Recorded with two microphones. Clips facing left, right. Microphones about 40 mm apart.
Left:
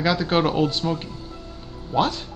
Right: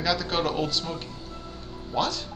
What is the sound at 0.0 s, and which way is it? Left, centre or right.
Speech, left.